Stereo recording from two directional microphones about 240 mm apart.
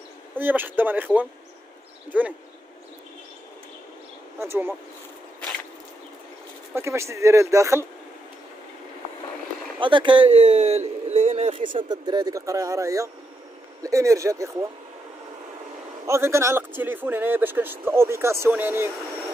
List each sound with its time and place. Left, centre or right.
0.4 s a man's voice: centre
4.4 s a man's voice: centre
6.7 s a man's voice: centre
9.8 s a man's voice: centre
16.1 s a man's voice: centre